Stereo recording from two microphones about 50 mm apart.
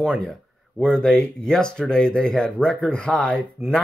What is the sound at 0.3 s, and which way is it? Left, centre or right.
Speech, centre.